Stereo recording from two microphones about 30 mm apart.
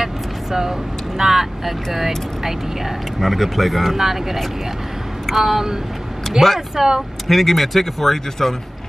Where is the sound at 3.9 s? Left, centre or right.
Centre.